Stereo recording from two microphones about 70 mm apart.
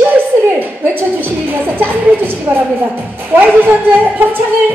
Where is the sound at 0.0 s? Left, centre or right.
Right.